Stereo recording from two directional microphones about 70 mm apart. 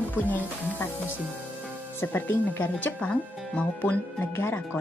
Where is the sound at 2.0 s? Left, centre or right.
Left.